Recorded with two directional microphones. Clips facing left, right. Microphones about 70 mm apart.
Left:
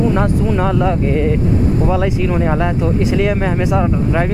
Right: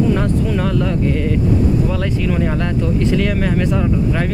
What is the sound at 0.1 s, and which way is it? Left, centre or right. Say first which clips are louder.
Speech: left 2 dB; left.